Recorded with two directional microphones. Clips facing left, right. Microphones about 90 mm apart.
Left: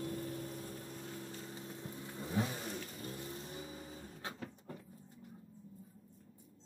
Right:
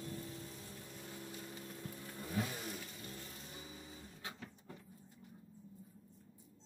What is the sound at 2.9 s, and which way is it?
Music, 35° left (ahead or behind).